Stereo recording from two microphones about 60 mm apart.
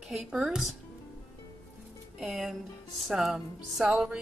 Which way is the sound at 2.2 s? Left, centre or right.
Centre.